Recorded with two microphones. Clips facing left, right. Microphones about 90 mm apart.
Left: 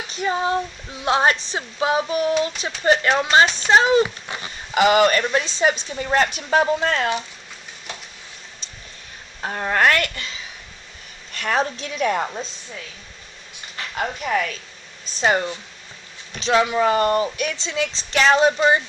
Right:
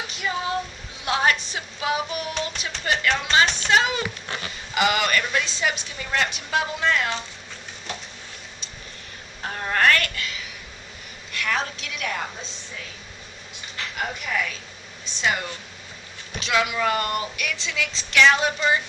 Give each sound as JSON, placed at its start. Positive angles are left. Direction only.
{"t": 0.1, "sound": "speech", "side_deg": 35}
{"t": 9.5, "sound": "a woman's voice", "side_deg": 25}
{"t": 13.9, "sound": "speech", "side_deg": 40}